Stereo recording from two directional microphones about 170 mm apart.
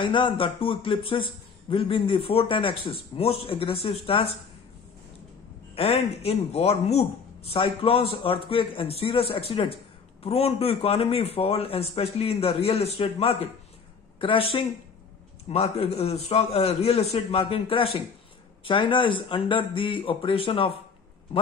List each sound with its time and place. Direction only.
0.0 s a man's voice: 30° left (ahead or behind)
5.8 s a man's voice: 35° left (ahead or behind)